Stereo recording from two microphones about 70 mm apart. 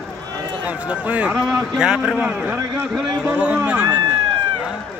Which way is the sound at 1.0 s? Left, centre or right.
Centre.